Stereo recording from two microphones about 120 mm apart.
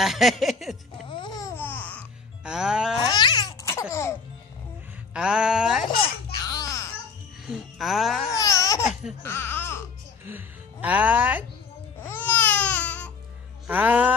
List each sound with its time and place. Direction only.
0.0 s a sound: centre (ahead or behind)
1.1 s babbling: 40° left (ahead or behind)
1.6 s music: 15° left (ahead or behind)
2.4 s a sound: 5° right (ahead or behind)
3.1 s babbling: 35° left (ahead or behind)
3.9 s music: 25° left (ahead or behind)
5.1 s a sound: 5° right (ahead or behind)
6.4 s music: 30° left (ahead or behind)
7.4 s music: 5° right (ahead or behind)
8.4 s babbling: 25° left (ahead or behind)
9.2 s music: 20° left (ahead or behind)
10.2 s speech: 15° right (ahead or behind)
12.1 s baby cry: 15° left (ahead or behind)
13.7 s a sound: 15° right (ahead or behind)